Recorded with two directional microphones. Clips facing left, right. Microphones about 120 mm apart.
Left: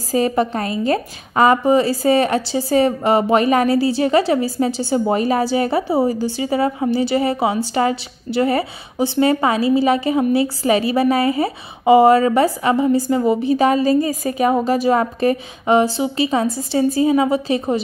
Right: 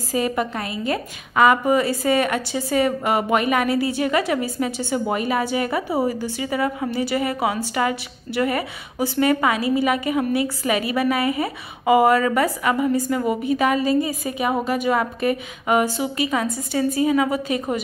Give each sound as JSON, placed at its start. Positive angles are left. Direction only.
{"t": 0.1, "sound": "a woman's voice", "side_deg": 35}